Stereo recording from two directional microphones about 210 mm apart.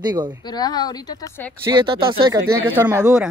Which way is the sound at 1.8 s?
25° right (ahead or behind).